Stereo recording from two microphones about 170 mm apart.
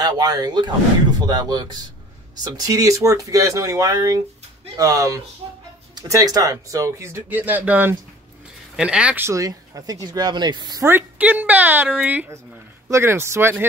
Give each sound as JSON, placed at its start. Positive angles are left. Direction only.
{"t": 0.0, "sound": "speech", "side_deg": -25}